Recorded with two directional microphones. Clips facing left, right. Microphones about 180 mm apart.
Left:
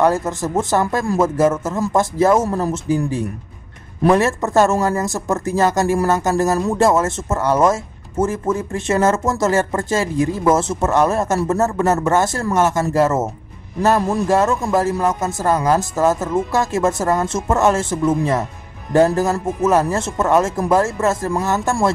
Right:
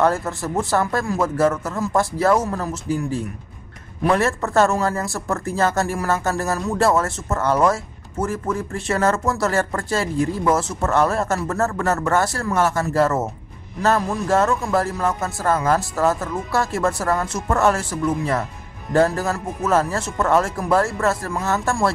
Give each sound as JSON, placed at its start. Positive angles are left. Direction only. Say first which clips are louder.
{"t": 0.0, "sound": "a man's voice", "louder": "left 3 dB", "side_deg": 20}